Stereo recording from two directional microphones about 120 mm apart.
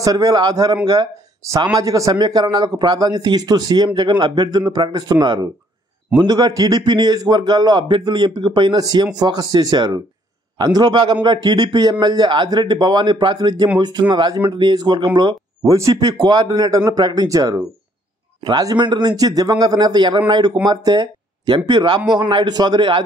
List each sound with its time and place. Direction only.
0.0 s speech: 30° right (ahead or behind)
15.7 s speech: 25° right (ahead or behind)